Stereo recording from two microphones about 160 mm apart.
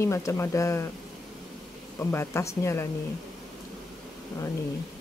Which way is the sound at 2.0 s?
15° left (ahead or behind).